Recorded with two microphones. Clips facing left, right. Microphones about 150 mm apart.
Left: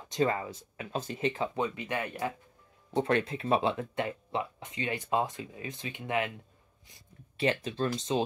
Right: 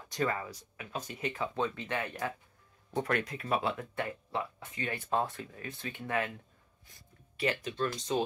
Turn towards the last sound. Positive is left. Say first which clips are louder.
# left 3 dB
turn(degrees=30)  # may be behind; listen again after turning